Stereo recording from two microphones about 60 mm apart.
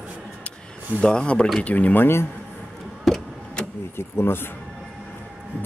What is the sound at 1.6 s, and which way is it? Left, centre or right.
Speech, left.